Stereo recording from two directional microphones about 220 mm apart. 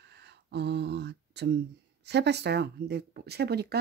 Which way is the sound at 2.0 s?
50° right (ahead or behind).